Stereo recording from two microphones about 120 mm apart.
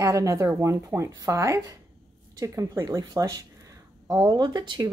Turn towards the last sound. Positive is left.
turn(degrees=-40)  # may be behind; listen again after turning